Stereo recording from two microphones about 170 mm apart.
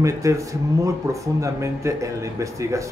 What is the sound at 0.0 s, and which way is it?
Speech, 20° right (ahead or behind).